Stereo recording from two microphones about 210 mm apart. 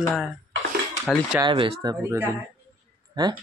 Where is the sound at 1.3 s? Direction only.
20° right (ahead or behind).